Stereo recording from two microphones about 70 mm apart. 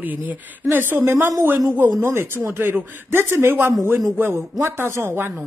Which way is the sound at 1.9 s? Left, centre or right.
Right.